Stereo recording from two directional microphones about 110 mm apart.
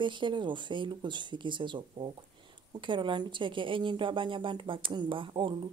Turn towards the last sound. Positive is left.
turn(degrees=-50)  # may be behind; listen again after turning